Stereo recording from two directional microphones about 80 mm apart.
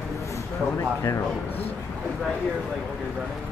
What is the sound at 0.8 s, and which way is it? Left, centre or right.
Speech, left.